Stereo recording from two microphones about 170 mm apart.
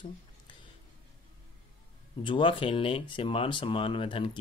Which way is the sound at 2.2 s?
30° left (ahead or behind).